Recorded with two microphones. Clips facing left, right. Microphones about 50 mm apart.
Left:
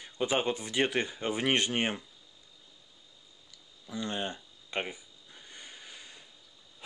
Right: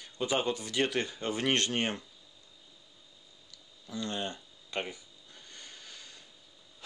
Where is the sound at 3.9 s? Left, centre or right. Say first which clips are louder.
Left 1 dB; centre.